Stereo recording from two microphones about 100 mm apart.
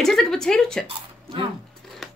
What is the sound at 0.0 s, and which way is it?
Speech, 5° left (ahead or behind).